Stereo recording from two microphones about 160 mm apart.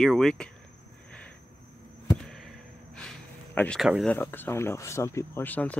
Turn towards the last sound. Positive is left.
turn(degrees=10)  # may be behind; listen again after turning